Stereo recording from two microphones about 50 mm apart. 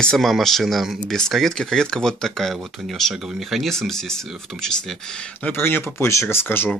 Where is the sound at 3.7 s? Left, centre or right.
Centre.